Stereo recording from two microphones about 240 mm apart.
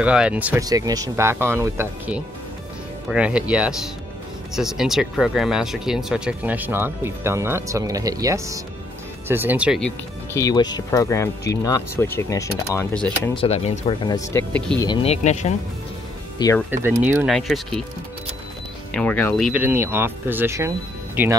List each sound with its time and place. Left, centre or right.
0.0 s speech: centre
13.3 s speech: left; by 14.9 s centre
14.9 s speech: left
16.7 s speech: centre
18.9 s speech: centre
19.5 s speech: centre